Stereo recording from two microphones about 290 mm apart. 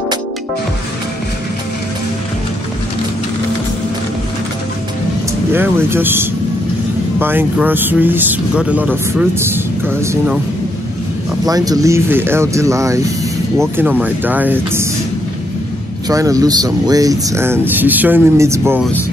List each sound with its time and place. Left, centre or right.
5.5 s speech: centre
11.4 s speech: centre
16.1 s speech: centre